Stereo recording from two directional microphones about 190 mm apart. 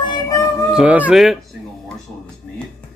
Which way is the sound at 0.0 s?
25° left (ahead or behind).